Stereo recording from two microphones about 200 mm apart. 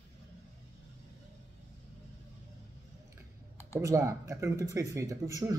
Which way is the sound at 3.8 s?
15° right (ahead or behind).